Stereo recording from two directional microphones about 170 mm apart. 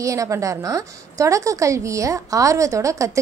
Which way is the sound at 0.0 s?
20° right (ahead or behind).